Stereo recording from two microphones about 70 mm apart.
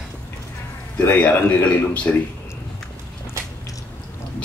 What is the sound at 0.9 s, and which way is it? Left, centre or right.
Speech, left.